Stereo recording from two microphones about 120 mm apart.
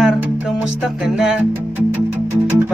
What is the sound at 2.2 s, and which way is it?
Music, 20° right (ahead or behind).